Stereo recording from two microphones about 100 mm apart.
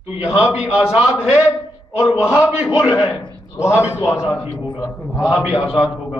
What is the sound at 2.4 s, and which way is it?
Speech, 10° right (ahead or behind).